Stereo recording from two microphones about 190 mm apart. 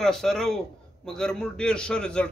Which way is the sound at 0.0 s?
Centre (ahead or behind).